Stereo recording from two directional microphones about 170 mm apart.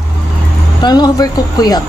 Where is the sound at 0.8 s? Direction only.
25° left (ahead or behind).